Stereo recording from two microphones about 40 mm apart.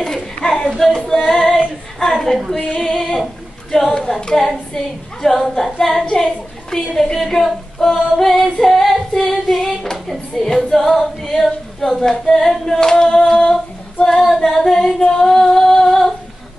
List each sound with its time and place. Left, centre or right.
0.0 s a sound: centre
1.0 s female singing: centre
2.5 s female singing: left
2.8 s female singing: centre
3.9 s female singing: centre
6.0 s a child's voice: centre
7.0 s female singing: centre